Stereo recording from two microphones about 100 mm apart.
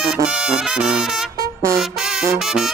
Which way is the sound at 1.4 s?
30° right (ahead or behind).